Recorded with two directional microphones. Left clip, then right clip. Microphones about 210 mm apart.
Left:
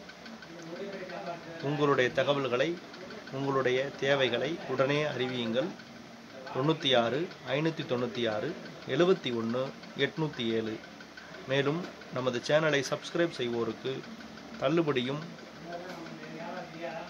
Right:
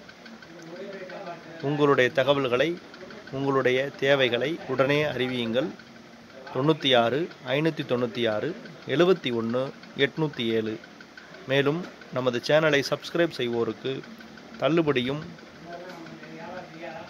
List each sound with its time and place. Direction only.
1.7 s speech: 30° right (ahead or behind)